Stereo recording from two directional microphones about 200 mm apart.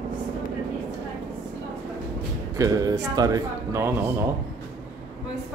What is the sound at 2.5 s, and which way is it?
Speech, 20° right (ahead or behind).